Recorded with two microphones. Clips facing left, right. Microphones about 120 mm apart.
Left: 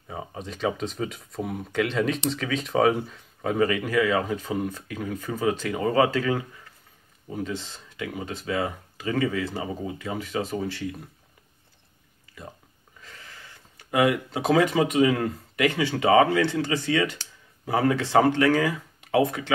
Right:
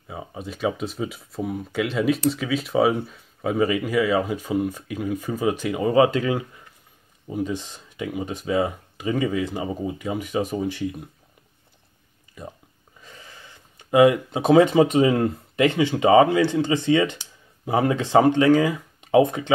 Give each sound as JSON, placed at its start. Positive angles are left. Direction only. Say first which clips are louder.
{"t": 0.1, "sound": "speech", "louder": "right 1 dB", "side_deg": -5}
{"t": 13.0, "sound": "speech", "louder": "right 1 dB", "side_deg": -15}